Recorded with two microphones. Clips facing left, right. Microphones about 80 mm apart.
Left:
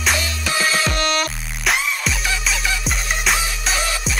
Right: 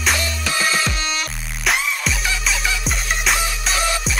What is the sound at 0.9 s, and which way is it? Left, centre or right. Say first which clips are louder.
Music: left 5 dB; left.